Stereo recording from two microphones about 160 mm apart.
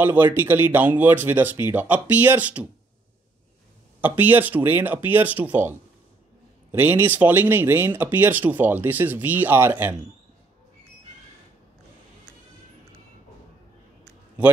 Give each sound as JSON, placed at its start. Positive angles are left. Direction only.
{"t": 0.0, "sound": "speech", "side_deg": -10}
{"t": 4.0, "sound": "speech", "side_deg": -10}